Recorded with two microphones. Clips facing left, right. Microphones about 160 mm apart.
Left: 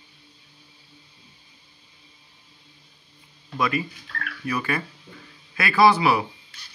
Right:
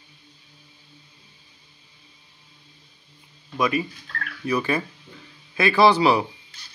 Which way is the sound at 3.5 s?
15° right (ahead or behind).